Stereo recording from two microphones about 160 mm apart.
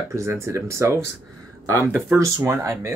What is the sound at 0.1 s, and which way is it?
Speech, 15° right (ahead or behind).